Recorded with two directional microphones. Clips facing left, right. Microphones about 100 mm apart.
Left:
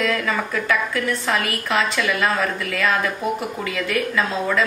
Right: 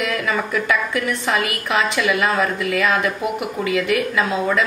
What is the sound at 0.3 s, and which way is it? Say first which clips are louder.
A woman's voice: right 2 dB; 20° right (ahead or behind).